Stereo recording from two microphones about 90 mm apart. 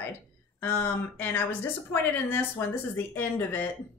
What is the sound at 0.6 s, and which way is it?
Speech, 25° left (ahead or behind).